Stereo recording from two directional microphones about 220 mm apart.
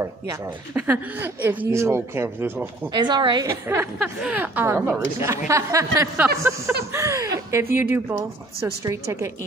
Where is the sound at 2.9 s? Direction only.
20° right (ahead or behind).